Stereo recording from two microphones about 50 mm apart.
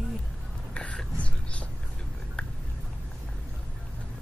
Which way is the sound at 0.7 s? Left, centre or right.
Left.